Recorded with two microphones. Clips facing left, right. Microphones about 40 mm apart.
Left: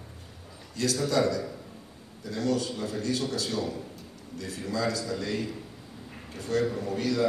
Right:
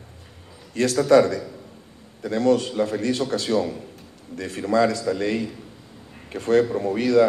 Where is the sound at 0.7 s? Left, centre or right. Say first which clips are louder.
Right 10 dB; right.